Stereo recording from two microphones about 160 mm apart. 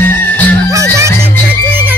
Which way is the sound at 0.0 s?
10° left (ahead or behind).